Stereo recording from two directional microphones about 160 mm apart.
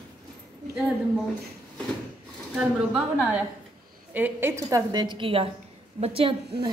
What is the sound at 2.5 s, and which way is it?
A woman's voice, 5° right (ahead or behind).